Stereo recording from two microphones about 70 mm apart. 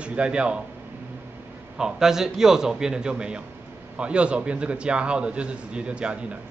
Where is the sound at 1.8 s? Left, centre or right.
Centre.